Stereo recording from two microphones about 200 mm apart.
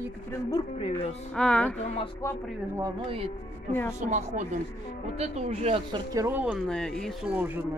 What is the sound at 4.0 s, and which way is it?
Speech, 35° right (ahead or behind).